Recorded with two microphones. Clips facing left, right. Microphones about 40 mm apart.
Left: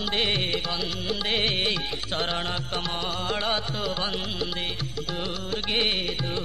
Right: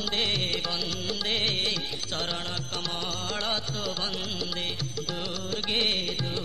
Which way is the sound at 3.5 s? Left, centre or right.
Left.